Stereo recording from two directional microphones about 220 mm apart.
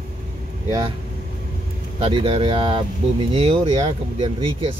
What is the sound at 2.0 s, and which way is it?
Speech, 25° right (ahead or behind).